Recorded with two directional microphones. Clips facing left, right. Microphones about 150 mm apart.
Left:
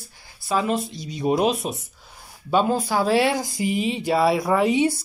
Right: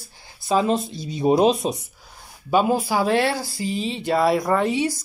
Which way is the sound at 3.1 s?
15° left (ahead or behind).